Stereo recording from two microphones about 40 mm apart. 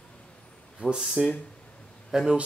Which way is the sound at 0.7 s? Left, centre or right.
Right.